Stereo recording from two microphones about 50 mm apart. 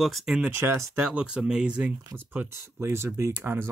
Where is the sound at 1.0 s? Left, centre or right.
Right.